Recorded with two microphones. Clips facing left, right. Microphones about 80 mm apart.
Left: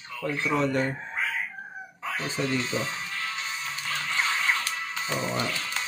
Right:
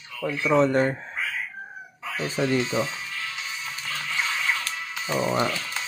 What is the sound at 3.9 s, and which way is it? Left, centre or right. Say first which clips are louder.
Music: left 1 dB; left.